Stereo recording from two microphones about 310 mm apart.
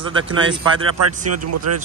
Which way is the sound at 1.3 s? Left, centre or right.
Right.